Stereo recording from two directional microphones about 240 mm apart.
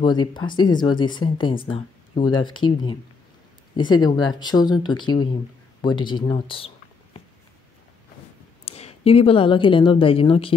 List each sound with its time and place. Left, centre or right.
0.0 s speech: centre
8.6 s a woman's voice: left